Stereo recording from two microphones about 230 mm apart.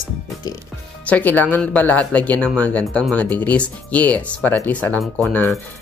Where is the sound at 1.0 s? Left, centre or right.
Centre.